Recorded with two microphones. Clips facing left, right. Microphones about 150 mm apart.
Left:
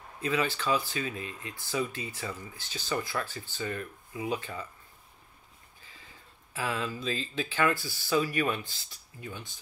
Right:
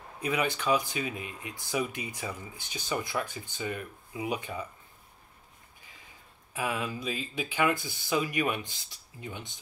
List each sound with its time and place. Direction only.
0.2 s speech: 15° right (ahead or behind)
6.5 s speech: 15° right (ahead or behind)